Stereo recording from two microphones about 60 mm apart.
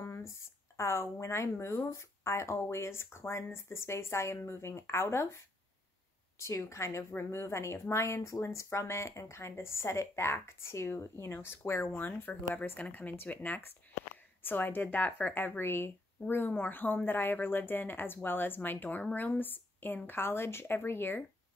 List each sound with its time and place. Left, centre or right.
0.0 s a woman's voice: left